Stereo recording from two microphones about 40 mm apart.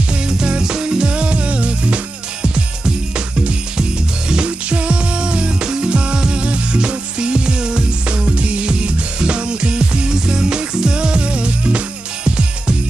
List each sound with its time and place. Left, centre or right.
0.3 s music: centre
4.3 s music: right